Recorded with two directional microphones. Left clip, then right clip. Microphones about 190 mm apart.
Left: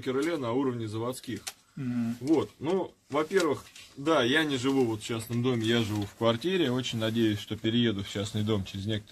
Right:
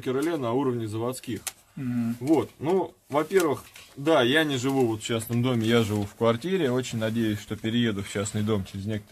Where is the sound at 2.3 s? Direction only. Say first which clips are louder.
Right 3 dB; 45° right (ahead or behind).